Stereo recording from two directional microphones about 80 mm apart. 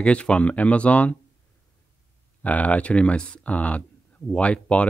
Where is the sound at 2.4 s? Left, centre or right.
Centre.